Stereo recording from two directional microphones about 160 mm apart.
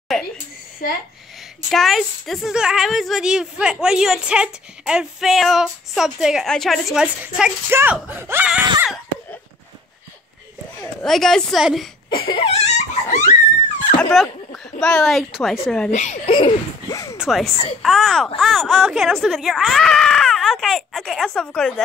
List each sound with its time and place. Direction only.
1.7 s a woman's voice: centre (ahead or behind)
10.8 s a woman's voice: 5° left (ahead or behind)
12.1 s laughter: 30° left (ahead or behind)
13.3 s a sound: 45° left (ahead or behind)
13.9 s speech: centre (ahead or behind)
15.9 s speech: 45° left (ahead or behind)
16.3 s a sound: 25° left (ahead or behind)
17.2 s a woman's voice: centre (ahead or behind)